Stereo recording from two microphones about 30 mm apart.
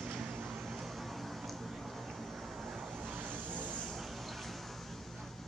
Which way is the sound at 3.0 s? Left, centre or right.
Right.